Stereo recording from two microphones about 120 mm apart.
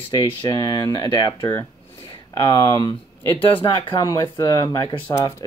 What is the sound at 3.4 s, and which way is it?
Speech, 45° left (ahead or behind).